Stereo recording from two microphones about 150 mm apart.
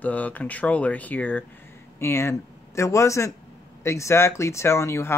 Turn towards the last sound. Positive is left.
turn(degrees=20)  # may be behind; listen again after turning